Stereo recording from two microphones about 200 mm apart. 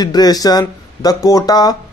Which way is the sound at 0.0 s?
20° left (ahead or behind).